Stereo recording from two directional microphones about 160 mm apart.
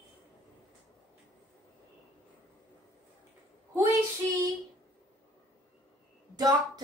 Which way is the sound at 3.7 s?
20° right (ahead or behind).